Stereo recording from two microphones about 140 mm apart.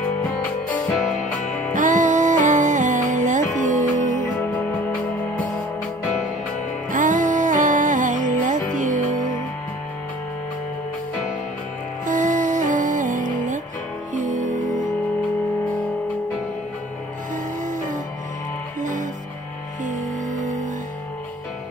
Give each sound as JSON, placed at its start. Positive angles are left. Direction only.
{"t": 1.7, "sound": "music", "side_deg": -65}
{"t": 6.9, "sound": "music", "side_deg": -65}
{"t": 12.1, "sound": "music", "side_deg": -65}
{"t": 17.6, "sound": "music", "side_deg": -65}